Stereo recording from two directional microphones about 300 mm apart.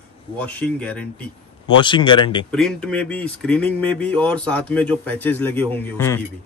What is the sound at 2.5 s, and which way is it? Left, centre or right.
Speech, centre.